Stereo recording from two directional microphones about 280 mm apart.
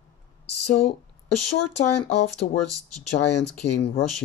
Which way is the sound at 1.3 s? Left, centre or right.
Left.